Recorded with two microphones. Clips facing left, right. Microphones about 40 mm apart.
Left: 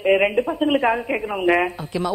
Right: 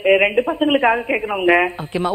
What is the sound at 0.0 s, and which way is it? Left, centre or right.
A woman's voice, right.